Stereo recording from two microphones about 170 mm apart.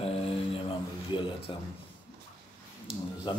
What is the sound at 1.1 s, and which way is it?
Speech, 30° left (ahead or behind).